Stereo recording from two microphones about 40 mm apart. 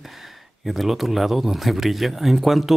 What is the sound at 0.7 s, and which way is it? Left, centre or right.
Speech, centre.